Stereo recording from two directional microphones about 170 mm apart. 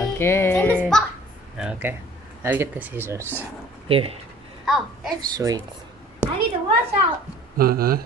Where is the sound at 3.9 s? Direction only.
35° right (ahead or behind).